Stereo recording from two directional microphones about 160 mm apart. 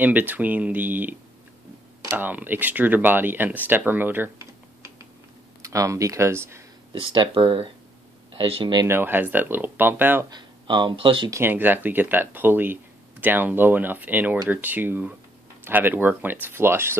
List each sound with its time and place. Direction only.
0.0 s speech: 10° right (ahead or behind)
6.9 s speech: 30° right (ahead or behind)
8.8 s speech: 15° right (ahead or behind)
10.3 s speech: 30° right (ahead or behind)
11.3 s speech: 15° right (ahead or behind)